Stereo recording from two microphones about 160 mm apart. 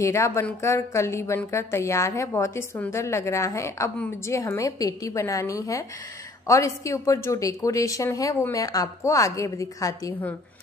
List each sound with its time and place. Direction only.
0.0 s a woman's voice: 20° left (ahead or behind)